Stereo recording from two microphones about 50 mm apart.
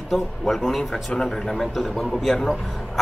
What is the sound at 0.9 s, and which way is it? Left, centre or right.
Speech, centre.